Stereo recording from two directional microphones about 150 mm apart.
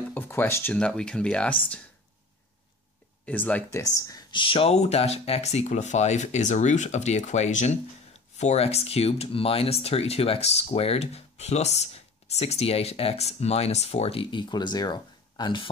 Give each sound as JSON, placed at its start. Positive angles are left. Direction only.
{"t": 0.1, "sound": "speech", "side_deg": 15}
{"t": 3.3, "sound": "speech", "side_deg": 10}
{"t": 3.8, "sound": "speech", "side_deg": 25}